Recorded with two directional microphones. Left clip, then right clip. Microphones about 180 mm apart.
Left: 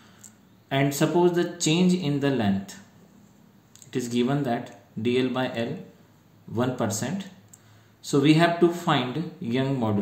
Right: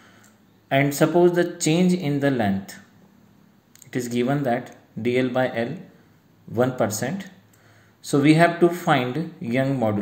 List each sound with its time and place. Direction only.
0.7 s speech: 20° right (ahead or behind)
3.8 s speech: 25° right (ahead or behind)